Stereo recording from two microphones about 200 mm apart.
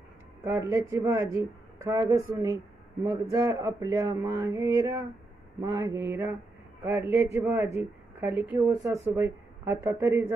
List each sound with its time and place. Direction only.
0.4 s speech: 15° right (ahead or behind)